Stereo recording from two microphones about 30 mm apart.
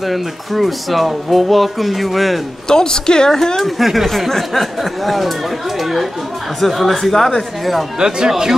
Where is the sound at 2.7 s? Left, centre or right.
Left.